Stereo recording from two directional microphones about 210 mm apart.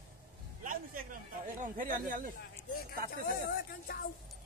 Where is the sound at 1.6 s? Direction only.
40° right (ahead or behind).